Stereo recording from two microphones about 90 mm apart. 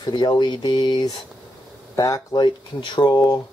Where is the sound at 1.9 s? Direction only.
40° left (ahead or behind).